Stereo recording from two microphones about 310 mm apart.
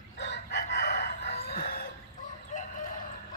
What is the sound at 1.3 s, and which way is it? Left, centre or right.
Crowing, left.